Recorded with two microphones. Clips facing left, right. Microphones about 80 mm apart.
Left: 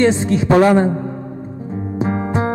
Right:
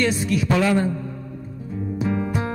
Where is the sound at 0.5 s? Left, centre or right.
Left.